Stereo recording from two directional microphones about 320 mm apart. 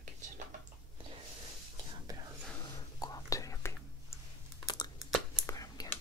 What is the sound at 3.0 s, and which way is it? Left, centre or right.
Whispering, centre.